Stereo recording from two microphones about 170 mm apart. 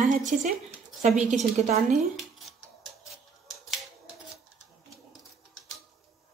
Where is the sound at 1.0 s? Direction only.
45° right (ahead or behind).